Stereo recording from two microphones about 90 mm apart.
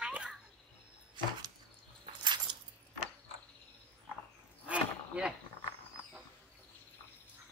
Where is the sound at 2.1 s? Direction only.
60° right (ahead or behind).